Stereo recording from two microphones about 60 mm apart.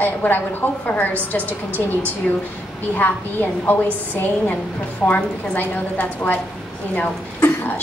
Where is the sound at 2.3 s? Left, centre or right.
Left.